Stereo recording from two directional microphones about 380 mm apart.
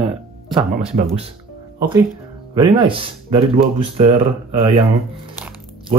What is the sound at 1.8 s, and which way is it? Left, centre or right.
Speech, centre.